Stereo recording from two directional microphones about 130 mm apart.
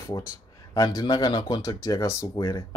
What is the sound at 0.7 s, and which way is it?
Speech, 30° left (ahead or behind).